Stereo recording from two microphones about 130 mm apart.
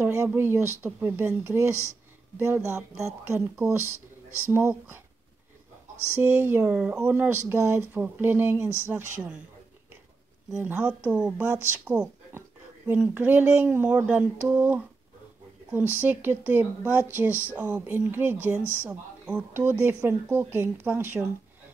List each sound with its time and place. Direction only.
0.0 s speech: 20° right (ahead or behind)
6.2 s speech: 15° right (ahead or behind)
6.6 s speech: 5° right (ahead or behind)
7.0 s speech: 15° right (ahead or behind)
10.5 s speech: 10° right (ahead or behind)
16.0 s speech: 15° right (ahead or behind)
18.6 s speech: 15° left (ahead or behind)
18.9 s speech: 15° right (ahead or behind)